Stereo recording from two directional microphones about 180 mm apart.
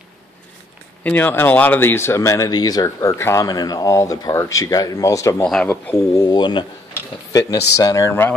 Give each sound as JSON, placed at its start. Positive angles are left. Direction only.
{"t": 1.0, "sound": "speech", "side_deg": 10}
{"t": 7.7, "sound": "speech", "side_deg": 20}